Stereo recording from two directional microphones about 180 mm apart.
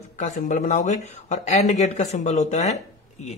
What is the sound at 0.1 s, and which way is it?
Speech, 45° left (ahead or behind).